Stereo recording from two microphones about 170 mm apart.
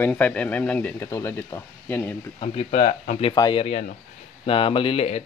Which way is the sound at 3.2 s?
25° left (ahead or behind).